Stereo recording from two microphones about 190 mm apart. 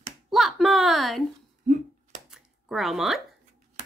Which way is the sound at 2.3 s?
Centre (ahead or behind).